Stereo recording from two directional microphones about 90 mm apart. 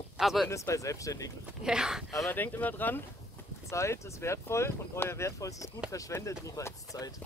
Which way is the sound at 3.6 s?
35° left (ahead or behind).